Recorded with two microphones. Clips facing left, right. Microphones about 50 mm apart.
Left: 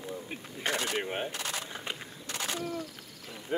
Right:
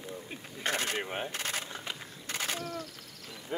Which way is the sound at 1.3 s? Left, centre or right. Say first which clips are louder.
Right 1 dB; right.